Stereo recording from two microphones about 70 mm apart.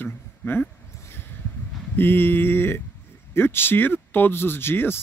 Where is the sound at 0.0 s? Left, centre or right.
Left.